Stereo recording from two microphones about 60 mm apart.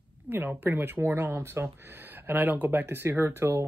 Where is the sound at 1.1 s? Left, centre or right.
Right.